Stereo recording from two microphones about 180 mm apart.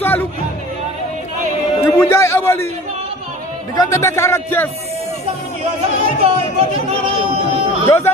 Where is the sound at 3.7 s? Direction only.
20° left (ahead or behind).